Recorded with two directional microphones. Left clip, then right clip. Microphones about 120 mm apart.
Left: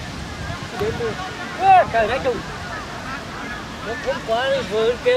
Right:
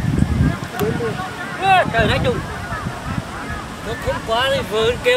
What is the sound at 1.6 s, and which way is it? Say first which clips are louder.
Speech: left 1 dB; 50° right (ahead or behind).